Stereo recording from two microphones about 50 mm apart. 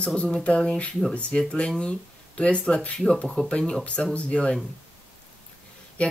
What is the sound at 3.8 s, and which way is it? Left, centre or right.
Speech, left.